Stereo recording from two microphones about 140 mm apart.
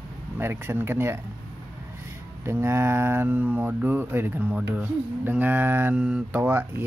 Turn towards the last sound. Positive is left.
turn(degrees=-10)  # may be behind; listen again after turning